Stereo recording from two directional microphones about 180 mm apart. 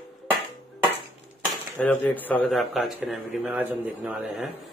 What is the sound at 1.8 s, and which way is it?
Speech, 10° left (ahead or behind).